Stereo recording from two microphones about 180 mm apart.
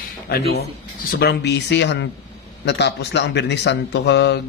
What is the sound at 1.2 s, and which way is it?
Speech, 70° left (ahead or behind).